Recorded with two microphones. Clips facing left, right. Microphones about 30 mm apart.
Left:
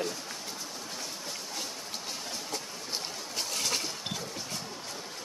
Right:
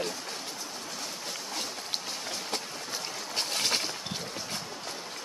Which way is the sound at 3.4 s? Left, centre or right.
Right.